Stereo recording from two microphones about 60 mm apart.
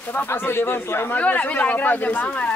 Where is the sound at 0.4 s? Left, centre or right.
Left.